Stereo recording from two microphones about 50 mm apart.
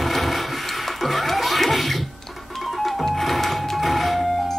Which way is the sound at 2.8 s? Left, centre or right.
Centre.